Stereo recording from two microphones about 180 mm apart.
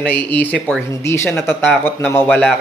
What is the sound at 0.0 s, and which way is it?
Speech, 10° left (ahead or behind).